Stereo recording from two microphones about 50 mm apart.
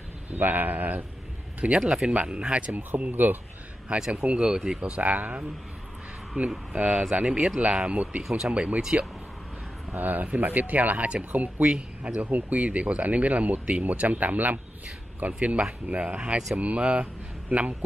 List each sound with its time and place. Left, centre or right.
0.4 s speech: right
3.0 s speech: right
4.1 s speech: right
4.8 s speech: right; by 8.5 s centre
8.5 s speech: right
9.9 s speech: right
11.7 s speech: right